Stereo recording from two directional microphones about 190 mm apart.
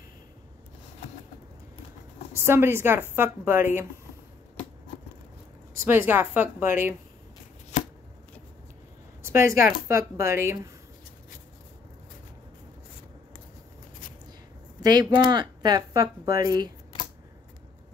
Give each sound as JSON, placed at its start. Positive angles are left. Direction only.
{"t": 2.3, "sound": "speech", "side_deg": -15}
{"t": 5.9, "sound": "speech", "side_deg": -10}
{"t": 9.2, "sound": "a sound", "side_deg": -15}
{"t": 9.7, "sound": "speech", "side_deg": -15}
{"t": 14.8, "sound": "speech", "side_deg": -20}